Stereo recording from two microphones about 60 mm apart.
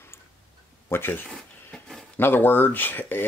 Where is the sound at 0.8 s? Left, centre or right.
Left.